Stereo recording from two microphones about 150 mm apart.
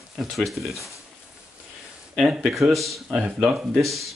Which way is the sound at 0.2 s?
Centre (ahead or behind).